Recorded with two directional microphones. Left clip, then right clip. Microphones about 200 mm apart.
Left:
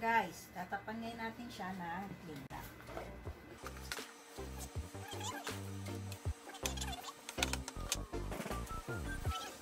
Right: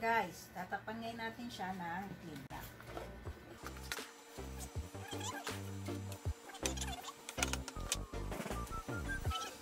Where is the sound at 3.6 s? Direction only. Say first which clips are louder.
Even; 5° right (ahead or behind).